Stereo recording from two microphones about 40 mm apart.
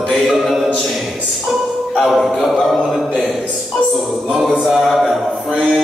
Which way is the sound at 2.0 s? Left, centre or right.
Centre.